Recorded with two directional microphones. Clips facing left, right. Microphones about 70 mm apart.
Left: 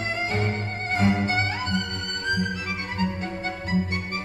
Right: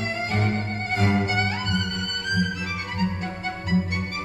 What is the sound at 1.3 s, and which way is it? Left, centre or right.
Violin, left.